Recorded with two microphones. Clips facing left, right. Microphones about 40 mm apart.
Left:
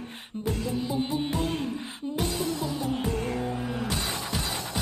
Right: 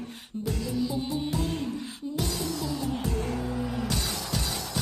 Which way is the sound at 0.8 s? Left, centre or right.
Left.